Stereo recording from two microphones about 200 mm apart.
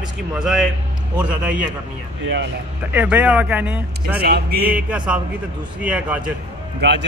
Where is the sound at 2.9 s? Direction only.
10° right (ahead or behind).